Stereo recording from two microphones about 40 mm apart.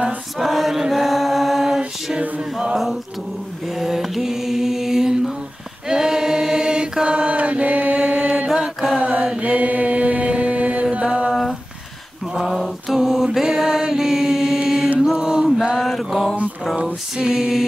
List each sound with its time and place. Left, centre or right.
0.4 s choir: centre
2.7 s a sound: centre
3.6 s mantra: centre
5.9 s choir: centre; by 8.5 s right
8.9 s mantra: right
9.5 s mantra: right
12.4 s a sound: centre
12.9 s chant: centre
15.1 s music: right
15.8 s music: centre
17.2 s a sound: centre